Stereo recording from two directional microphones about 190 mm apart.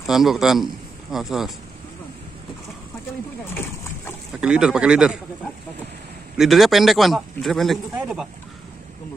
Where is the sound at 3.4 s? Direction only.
10° left (ahead or behind).